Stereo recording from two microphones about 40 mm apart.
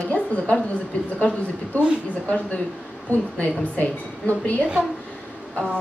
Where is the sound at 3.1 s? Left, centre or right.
Left.